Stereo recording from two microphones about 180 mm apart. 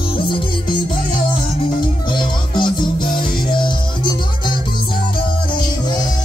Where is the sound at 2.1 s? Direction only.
25° left (ahead or behind).